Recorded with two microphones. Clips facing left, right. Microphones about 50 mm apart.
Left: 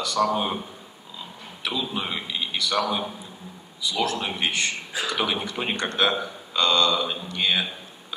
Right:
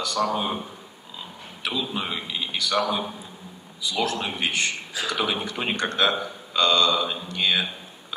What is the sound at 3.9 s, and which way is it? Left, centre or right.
Speech, right.